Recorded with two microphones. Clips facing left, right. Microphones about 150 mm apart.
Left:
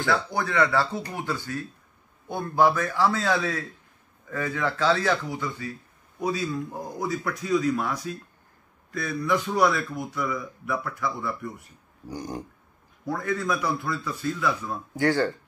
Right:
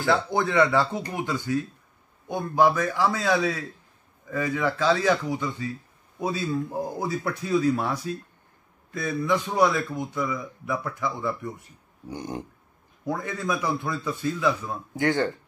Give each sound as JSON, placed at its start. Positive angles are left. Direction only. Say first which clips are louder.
{"t": 0.1, "sound": "a man's voice", "louder": "right 4 dB", "side_deg": -20}